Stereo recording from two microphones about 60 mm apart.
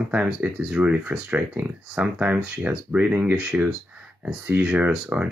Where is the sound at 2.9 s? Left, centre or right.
Right.